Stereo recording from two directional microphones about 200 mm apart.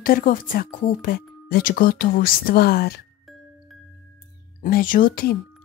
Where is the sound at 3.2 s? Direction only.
Centre (ahead or behind).